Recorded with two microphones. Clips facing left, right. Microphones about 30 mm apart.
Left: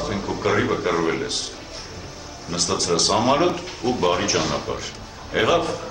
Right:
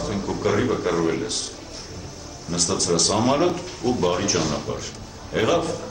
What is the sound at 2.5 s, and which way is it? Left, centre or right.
A man's voice, centre.